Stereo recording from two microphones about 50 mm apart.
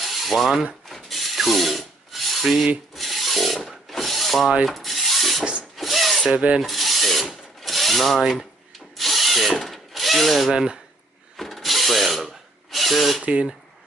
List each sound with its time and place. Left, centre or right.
0.0 s mechanisms: centre
0.8 s rub: centre
6.3 s rub: right
6.6 s rub: centre
7.6 s wood: centre
10.5 s speech: centre
11.3 s wood: centre
12.7 s a sound: centre
13.2 s rub: right